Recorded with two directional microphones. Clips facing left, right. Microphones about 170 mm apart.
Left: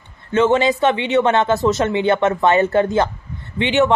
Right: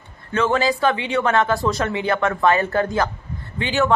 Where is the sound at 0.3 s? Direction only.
25° left (ahead or behind).